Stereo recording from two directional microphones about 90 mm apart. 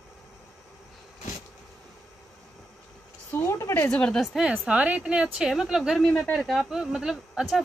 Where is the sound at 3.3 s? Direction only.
30° left (ahead or behind).